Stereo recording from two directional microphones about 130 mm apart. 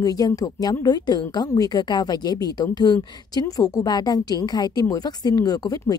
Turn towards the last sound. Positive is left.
turn(degrees=30)  # may be behind; listen again after turning